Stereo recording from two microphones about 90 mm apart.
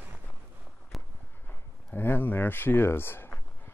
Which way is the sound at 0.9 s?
Centre (ahead or behind).